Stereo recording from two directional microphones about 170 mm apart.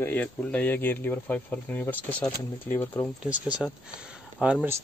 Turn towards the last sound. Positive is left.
turn(degrees=-5)  # may be behind; listen again after turning